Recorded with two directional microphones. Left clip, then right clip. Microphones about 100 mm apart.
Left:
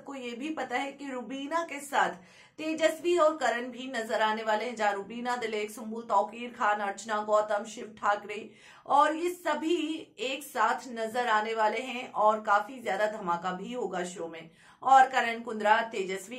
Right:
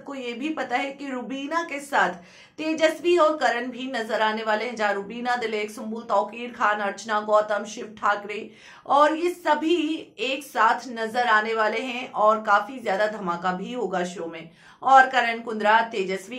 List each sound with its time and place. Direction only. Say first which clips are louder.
0.1 s a woman's voice: right 7 dB; 30° right (ahead or behind)